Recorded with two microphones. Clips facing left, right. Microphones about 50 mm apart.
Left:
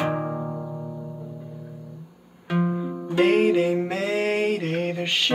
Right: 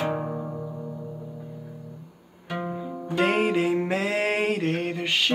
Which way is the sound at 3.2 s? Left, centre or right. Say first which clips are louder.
Left 4 dB; centre.